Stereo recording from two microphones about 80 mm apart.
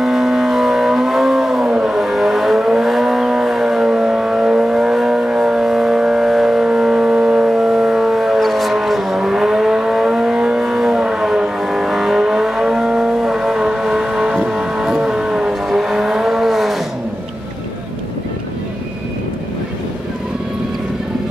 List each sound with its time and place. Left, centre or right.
0.0 s vehicle: centre